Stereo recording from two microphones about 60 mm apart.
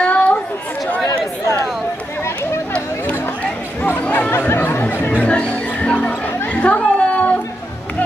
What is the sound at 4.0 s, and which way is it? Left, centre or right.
Speech, left.